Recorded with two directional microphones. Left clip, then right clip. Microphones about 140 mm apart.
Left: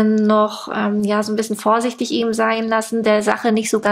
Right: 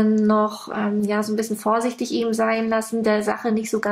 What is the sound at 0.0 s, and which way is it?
Speech, 25° left (ahead or behind).